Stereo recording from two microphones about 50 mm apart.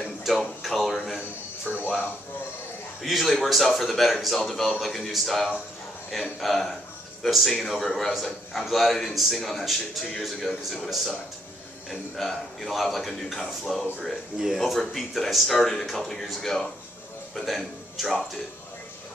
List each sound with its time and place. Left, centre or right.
0.2 s music: centre
1.7 s music: right
3.0 s a man's voice: centre